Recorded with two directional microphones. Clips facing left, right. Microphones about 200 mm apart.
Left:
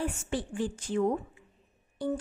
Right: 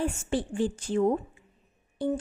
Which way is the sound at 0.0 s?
30° right (ahead or behind).